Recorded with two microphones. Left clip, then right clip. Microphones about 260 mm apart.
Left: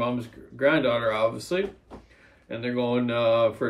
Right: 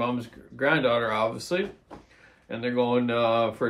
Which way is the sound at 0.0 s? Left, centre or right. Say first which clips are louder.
Left 1 dB; centre.